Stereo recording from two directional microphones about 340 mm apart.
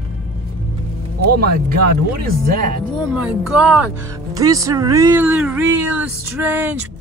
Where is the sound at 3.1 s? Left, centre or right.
Centre.